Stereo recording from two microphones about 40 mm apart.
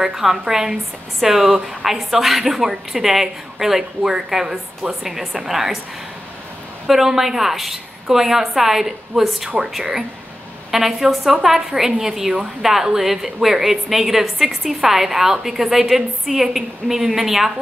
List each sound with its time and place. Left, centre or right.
0.0 s a woman's voice: centre
6.9 s a woman's voice: centre